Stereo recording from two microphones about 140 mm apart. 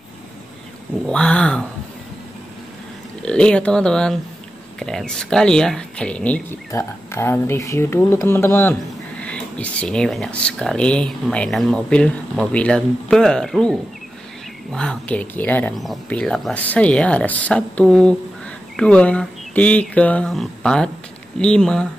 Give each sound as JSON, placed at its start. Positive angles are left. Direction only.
{"t": 1.0, "sound": "speech", "side_deg": 5}
{"t": 3.2, "sound": "speech", "side_deg": 5}
{"t": 6.7, "sound": "speech", "side_deg": 20}
{"t": 15.7, "sound": "speech", "side_deg": 0}